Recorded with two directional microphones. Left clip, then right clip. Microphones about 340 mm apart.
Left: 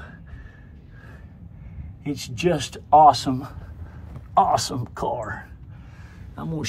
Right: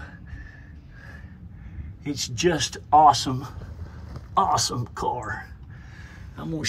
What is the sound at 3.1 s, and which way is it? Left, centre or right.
A man's voice, centre.